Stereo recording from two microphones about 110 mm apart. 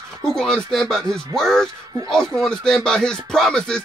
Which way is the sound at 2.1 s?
5° left (ahead or behind).